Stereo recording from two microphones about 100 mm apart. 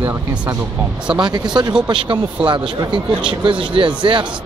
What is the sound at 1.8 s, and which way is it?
Speech, 55° right (ahead or behind).